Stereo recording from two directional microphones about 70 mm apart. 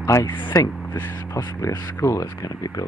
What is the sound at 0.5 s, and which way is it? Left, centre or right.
Speech, left.